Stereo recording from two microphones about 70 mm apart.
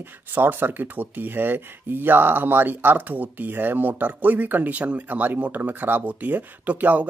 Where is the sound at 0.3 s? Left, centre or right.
Right.